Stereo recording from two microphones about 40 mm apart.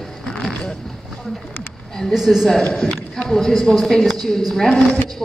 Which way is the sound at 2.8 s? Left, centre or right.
Left.